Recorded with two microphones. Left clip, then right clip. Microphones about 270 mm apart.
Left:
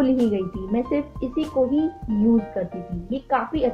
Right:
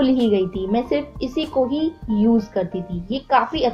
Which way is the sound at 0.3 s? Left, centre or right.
Right.